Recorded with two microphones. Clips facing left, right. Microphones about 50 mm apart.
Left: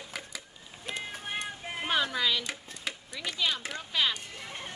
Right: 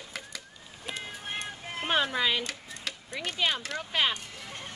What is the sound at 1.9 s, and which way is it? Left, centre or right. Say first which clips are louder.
Speech: right 2 dB; right.